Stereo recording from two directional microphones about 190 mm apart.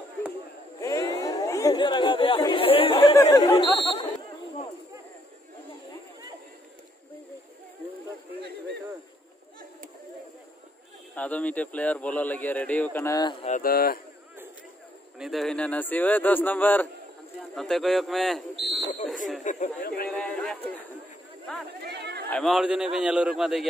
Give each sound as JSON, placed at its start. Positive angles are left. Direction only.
{"t": 0.7, "sound": "chatter", "side_deg": 15}
{"t": 3.2, "sound": "speech", "side_deg": 15}
{"t": 11.1, "sound": "a man's voice", "side_deg": 5}
{"t": 13.5, "sound": "speech", "side_deg": 50}
{"t": 15.1, "sound": "a man's voice", "side_deg": 0}
{"t": 19.4, "sound": "speech", "side_deg": 45}
{"t": 20.1, "sound": "a man's voice", "side_deg": 5}
{"t": 21.8, "sound": "speech", "side_deg": -60}
{"t": 22.3, "sound": "a man's voice", "side_deg": 0}